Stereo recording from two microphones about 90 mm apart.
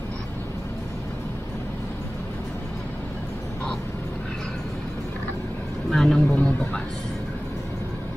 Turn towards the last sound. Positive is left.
turn(degrees=20)  # may be behind; listen again after turning